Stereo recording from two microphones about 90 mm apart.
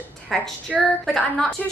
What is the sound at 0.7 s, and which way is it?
Speech, 10° right (ahead or behind).